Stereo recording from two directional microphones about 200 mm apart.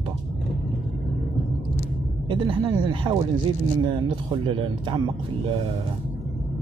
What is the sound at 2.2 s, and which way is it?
Speech, 25° right (ahead or behind).